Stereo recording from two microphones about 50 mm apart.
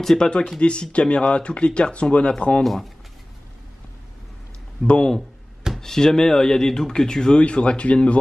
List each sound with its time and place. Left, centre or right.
0.0 s speech: centre
0.6 s speech: left
2.6 s speech: centre
4.8 s speech: left
5.8 s speech: centre